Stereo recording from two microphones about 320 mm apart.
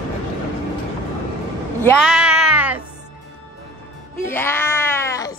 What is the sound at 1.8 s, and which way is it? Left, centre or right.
Music, centre.